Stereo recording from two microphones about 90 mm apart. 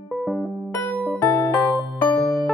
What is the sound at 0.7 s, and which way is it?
Music, 20° left (ahead or behind).